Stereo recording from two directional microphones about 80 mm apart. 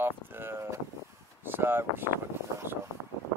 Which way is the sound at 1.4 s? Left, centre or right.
Right.